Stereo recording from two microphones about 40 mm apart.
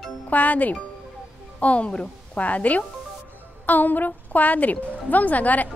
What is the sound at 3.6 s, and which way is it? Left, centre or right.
A woman's voice, left.